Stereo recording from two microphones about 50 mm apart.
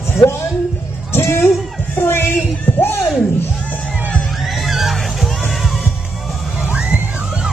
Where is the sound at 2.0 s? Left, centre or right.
Left.